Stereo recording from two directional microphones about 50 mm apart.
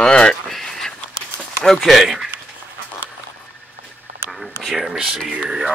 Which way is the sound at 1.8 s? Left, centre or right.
Centre.